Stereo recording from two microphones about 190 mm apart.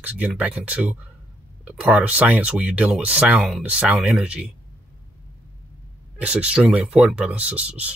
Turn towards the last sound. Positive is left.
turn(degrees=-5)  # may be behind; listen again after turning